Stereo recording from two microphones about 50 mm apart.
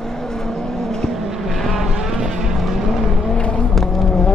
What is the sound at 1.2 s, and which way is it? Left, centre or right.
Vehicle, centre.